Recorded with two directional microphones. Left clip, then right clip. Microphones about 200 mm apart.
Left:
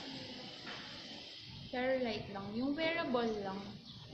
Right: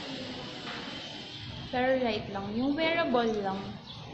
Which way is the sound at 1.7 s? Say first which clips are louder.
Right 8 dB; 10° right (ahead or behind).